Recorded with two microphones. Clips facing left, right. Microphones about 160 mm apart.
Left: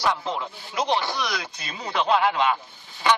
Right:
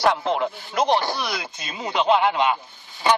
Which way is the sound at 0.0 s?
60° right (ahead or behind).